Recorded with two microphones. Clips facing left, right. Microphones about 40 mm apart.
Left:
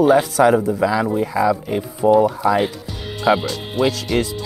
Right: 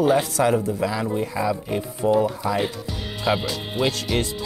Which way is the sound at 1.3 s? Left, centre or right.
Left.